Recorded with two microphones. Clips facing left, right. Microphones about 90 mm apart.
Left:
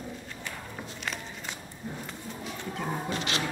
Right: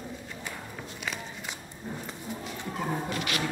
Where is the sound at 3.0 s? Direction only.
25° left (ahead or behind).